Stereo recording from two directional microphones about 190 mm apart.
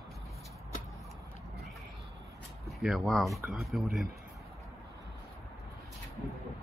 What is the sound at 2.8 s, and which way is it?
Speech, centre (ahead or behind).